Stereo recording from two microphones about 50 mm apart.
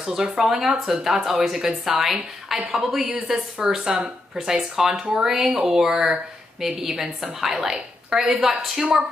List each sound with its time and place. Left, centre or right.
0.0 s a woman's voice: centre